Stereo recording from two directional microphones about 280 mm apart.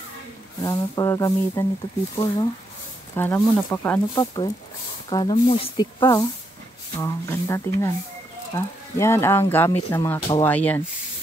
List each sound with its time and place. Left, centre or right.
0.6 s speech: centre
3.2 s speech: centre